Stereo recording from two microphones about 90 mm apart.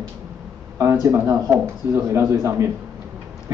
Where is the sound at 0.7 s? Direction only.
35° right (ahead or behind).